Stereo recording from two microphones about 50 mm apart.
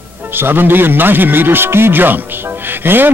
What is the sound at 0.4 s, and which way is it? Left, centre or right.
A man's voice, right.